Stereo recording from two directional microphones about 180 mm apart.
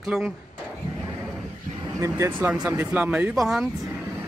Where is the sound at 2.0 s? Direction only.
15° right (ahead or behind); by 3.7 s centre (ahead or behind).